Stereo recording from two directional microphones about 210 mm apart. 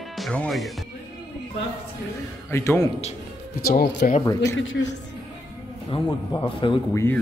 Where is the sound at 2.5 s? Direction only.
15° left (ahead or behind).